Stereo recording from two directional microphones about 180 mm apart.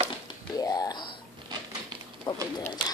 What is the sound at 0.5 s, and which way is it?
Speech, 20° left (ahead or behind).